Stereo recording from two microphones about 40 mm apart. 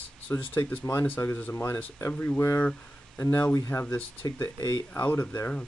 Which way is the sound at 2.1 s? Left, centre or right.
Left.